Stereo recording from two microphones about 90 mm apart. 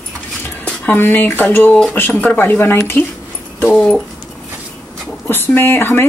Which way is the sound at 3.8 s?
5° left (ahead or behind).